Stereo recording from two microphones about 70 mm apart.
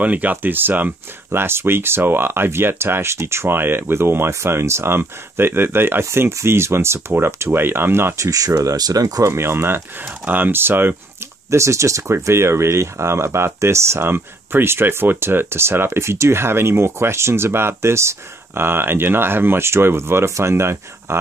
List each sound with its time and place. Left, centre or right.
0.0 s speech: right
8.2 s speech: right
11.5 s speech: right